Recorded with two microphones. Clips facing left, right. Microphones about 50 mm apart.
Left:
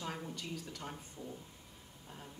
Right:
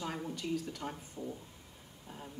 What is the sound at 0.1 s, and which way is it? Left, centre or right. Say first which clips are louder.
A woman's voice: right 6 dB; centre.